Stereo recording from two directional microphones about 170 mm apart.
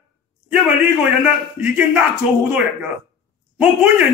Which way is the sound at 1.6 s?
5° right (ahead or behind).